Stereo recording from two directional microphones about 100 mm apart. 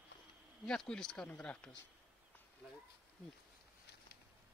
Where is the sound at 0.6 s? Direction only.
10° left (ahead or behind).